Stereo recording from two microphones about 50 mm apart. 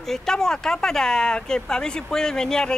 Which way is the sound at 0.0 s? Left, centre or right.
Centre.